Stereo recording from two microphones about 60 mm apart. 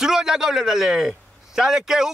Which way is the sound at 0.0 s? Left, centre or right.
Centre.